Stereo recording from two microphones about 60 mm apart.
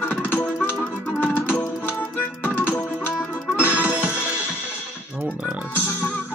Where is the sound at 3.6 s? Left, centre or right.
Left.